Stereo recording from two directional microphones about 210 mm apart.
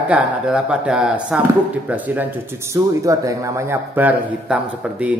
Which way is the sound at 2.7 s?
15° right (ahead or behind).